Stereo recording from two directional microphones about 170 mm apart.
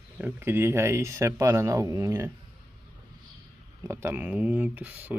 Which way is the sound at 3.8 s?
15° right (ahead or behind).